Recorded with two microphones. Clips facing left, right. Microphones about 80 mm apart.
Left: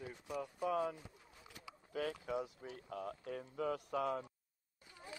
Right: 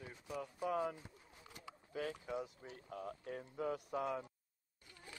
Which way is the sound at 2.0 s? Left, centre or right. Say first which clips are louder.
Left 2 dB; left.